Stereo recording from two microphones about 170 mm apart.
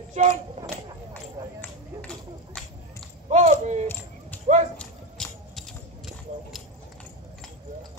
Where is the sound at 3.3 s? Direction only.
40° right (ahead or behind).